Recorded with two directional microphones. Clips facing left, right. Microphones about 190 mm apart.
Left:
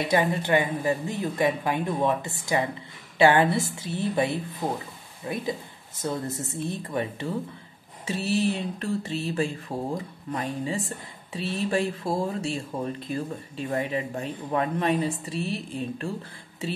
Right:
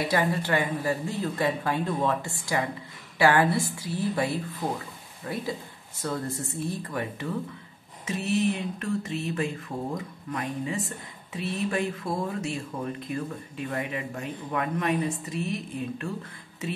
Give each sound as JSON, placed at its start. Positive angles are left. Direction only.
{"t": 0.1, "sound": "speech", "side_deg": 20}